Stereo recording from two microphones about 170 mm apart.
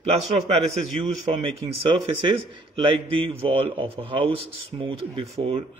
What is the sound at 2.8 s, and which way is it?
A man's voice, 30° right (ahead or behind).